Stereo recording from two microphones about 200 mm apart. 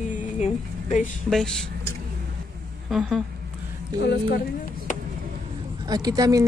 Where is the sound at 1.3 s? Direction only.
Centre (ahead or behind).